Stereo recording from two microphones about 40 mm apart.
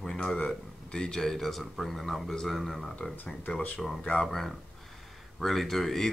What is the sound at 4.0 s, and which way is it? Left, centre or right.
Speech, left.